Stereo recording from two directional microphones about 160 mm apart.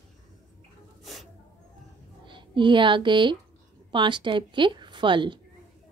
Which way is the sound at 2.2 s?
30° right (ahead or behind).